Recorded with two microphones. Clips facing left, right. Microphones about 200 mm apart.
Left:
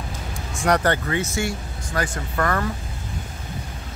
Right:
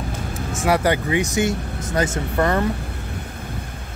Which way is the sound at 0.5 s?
5° right (ahead or behind).